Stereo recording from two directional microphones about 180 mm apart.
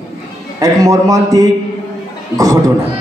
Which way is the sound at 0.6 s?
20° right (ahead or behind).